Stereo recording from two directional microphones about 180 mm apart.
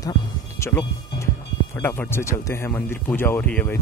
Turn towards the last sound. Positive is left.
turn(degrees=10)  # may be behind; listen again after turning